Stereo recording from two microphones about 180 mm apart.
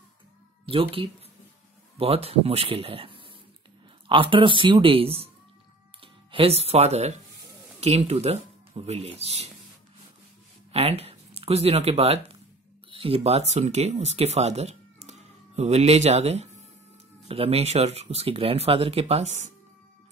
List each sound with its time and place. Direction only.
0.7 s speech: 30° right (ahead or behind)
10.7 s speech: 35° right (ahead or behind)